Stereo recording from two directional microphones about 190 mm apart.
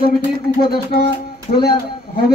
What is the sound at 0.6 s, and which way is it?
A man's voice, 55° left (ahead or behind).